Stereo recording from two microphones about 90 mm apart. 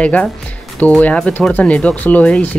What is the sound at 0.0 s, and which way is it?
Speech, 15° left (ahead or behind).